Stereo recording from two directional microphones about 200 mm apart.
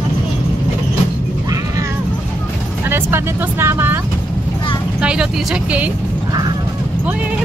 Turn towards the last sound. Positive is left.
turn(degrees=-5)  # may be behind; listen again after turning